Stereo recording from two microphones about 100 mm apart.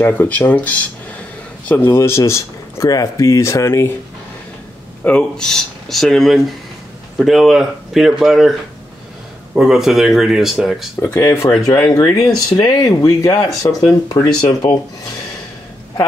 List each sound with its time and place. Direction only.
0.0 s speech: 20° left (ahead or behind)
5.0 s speech: 10° left (ahead or behind)
9.6 s speech: 5° right (ahead or behind)
11.1 s speech: 35° left (ahead or behind)